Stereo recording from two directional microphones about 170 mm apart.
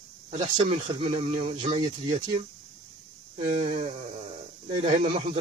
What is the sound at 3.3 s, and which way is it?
Speech, 35° right (ahead or behind).